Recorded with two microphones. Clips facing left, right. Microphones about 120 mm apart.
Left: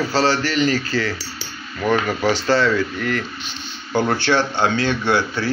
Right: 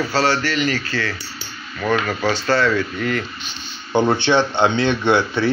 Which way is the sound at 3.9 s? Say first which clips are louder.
Right 2 dB; 20° right (ahead or behind).